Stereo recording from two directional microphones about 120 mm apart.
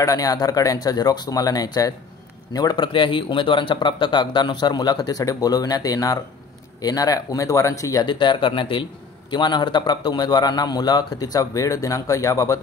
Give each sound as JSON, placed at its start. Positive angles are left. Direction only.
{"t": 0.0, "sound": "speech", "side_deg": 30}